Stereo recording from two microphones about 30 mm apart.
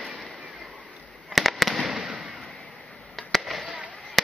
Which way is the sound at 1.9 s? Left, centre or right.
Centre.